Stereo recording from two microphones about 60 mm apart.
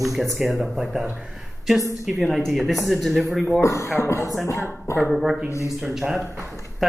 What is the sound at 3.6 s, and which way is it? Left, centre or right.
Speech, left.